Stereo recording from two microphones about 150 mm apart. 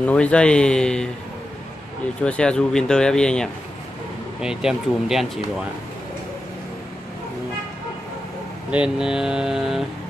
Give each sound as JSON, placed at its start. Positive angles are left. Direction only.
{"t": 0.0, "sound": "speech", "side_deg": 10}
{"t": 2.2, "sound": "speech", "side_deg": 5}
{"t": 8.6, "sound": "speech", "side_deg": -5}